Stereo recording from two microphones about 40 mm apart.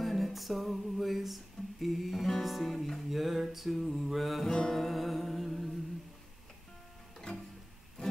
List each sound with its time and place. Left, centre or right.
0.0 s music: centre
4.6 s music: centre
4.8 s music: centre